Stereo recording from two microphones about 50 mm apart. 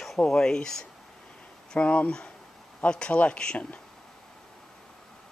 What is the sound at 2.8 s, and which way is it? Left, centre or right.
Speech, left.